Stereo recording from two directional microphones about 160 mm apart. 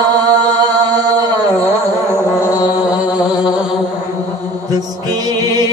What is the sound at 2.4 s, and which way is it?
Music, 20° left (ahead or behind).